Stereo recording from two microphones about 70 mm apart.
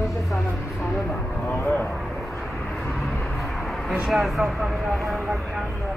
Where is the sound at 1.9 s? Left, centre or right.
Centre.